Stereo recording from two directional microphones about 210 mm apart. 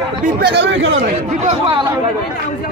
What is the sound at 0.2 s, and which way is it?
Speech, 50° right (ahead or behind).